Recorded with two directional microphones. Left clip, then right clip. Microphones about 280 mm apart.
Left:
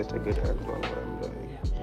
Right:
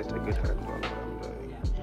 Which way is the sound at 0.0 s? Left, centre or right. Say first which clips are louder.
Left 2 dB; left.